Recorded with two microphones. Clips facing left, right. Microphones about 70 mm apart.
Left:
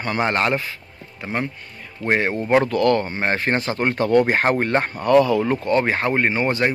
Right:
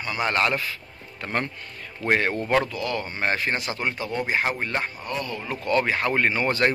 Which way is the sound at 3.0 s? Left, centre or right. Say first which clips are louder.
Left 4 dB; left.